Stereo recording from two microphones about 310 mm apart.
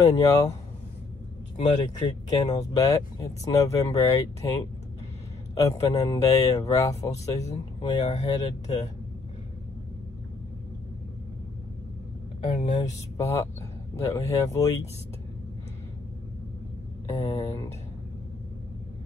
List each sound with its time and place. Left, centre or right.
0.0 s speech: centre
2.2 s speech: centre
12.4 s speech: left
13.2 s speech: centre
17.1 s speech: centre